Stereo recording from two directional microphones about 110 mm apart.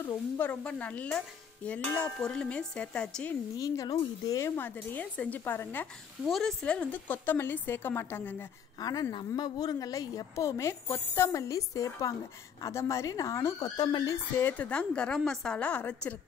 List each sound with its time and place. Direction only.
0.0 s a woman's voice: 20° left (ahead or behind)
3.5 s a woman's voice: 35° left (ahead or behind)
4.6 s a woman's voice: 15° left (ahead or behind)
6.2 s a woman's voice: 5° left (ahead or behind); by 8.5 s 20° left (ahead or behind)
8.7 s a woman's voice: 35° left (ahead or behind)
13.7 s a woman's voice: 40° left (ahead or behind)
14.1 s speech: 20° left (ahead or behind)
14.7 s a woman's voice: 10° left (ahead or behind)